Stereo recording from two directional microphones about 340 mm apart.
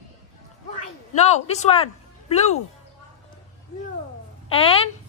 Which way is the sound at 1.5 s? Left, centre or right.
Centre.